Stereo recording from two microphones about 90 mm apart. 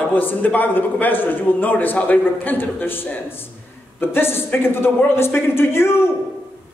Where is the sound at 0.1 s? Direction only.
20° left (ahead or behind).